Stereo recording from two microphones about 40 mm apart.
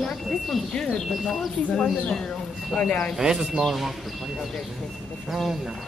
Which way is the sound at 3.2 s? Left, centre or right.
Centre.